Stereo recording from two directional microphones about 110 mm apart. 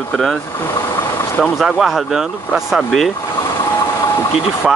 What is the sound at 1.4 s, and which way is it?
Speech, centre (ahead or behind).